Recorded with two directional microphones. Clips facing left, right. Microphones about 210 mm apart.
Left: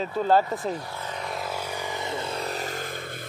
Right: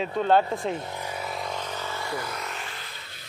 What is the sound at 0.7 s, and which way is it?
Vehicle, 20° right (ahead or behind).